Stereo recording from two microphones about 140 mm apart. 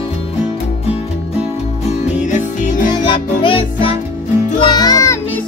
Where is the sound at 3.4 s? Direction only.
40° left (ahead or behind).